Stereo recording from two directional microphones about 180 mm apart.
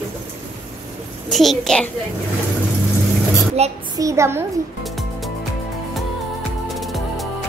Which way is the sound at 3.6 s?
35° right (ahead or behind).